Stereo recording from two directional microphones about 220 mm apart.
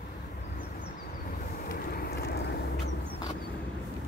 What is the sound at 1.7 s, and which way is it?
Vehicle, 40° left (ahead or behind).